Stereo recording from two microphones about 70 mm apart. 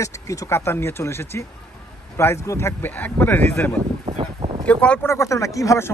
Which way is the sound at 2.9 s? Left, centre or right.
Left.